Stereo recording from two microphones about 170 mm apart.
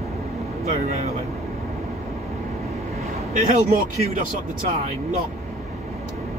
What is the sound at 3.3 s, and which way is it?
Speech, 45° right (ahead or behind).